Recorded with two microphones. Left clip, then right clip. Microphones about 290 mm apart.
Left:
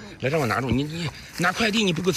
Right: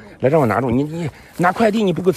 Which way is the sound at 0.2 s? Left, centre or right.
Right.